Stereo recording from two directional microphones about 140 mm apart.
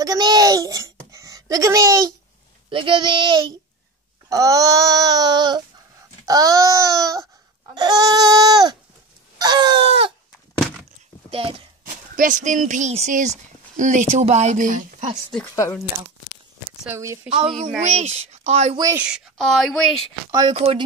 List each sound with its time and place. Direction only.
0.0 s a sound: 30° right (ahead or behind)
2.7 s speech: 35° right (ahead or behind)
4.3 s babbling: 25° right (ahead or behind)
6.2 s baby cry: 25° right (ahead or behind)
7.7 s goat: 30° right (ahead or behind)
9.4 s a sound: 30° right (ahead or behind)
11.2 s a sound: 40° right (ahead or behind)
11.8 s speech: 70° right (ahead or behind)
16.9 s speech: 20° right (ahead or behind)
17.3 s speech: 40° right (ahead or behind)
17.8 s speech: 50° right (ahead or behind)
18.9 s speech: 5° right (ahead or behind)
20.2 s speech: 30° right (ahead or behind)
20.5 s speech: 45° right (ahead or behind)